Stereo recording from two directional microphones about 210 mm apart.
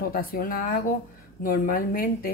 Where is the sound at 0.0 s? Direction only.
45° left (ahead or behind).